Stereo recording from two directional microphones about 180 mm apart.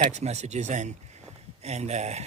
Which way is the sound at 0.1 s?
40° right (ahead or behind).